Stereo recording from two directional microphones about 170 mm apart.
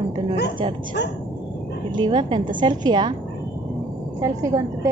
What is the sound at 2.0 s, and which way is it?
A woman's voice, 25° right (ahead or behind).